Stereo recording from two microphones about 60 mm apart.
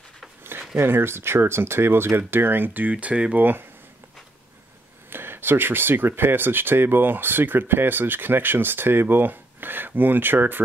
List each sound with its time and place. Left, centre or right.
0.4 s speech: right; by 3.4 s centre
5.1 s speech: right